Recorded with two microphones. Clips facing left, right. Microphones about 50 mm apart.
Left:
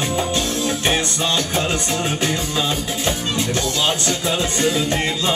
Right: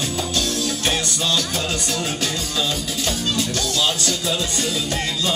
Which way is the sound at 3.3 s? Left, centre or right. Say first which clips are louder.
Left 2 dB; left.